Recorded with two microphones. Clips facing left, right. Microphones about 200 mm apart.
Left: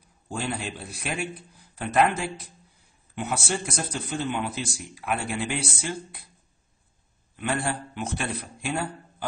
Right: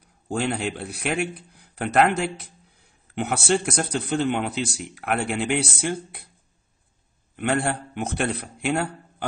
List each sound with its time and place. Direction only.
0.4 s a man's voice: 65° right (ahead or behind)
7.3 s a man's voice: 60° right (ahead or behind)